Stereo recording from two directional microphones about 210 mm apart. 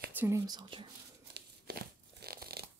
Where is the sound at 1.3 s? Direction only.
50° right (ahead or behind).